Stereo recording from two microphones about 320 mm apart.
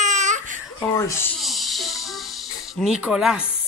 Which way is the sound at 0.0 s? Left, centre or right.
Right.